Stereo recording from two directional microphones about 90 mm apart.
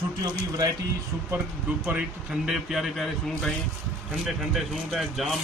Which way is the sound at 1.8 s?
15° right (ahead or behind).